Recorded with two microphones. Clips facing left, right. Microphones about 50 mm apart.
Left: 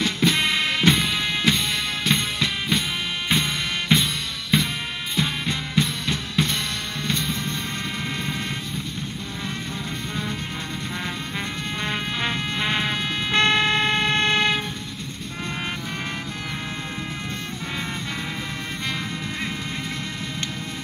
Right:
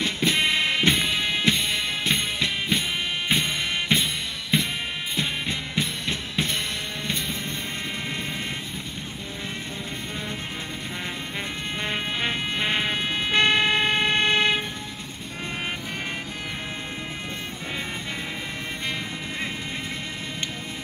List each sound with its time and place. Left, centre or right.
0.0 s music: centre
3.3 s drum: centre
5.1 s drum kit: centre
7.1 s music: centre
11.8 s music: centre